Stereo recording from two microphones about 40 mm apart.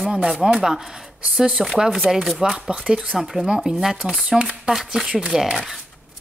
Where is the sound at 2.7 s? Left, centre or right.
Right.